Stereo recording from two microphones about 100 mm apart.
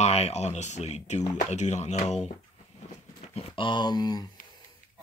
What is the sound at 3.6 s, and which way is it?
Speech, 45° left (ahead or behind).